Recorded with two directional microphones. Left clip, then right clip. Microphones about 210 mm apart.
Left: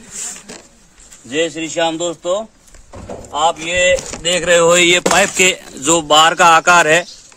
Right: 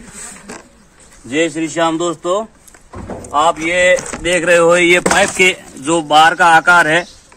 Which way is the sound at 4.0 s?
20° left (ahead or behind).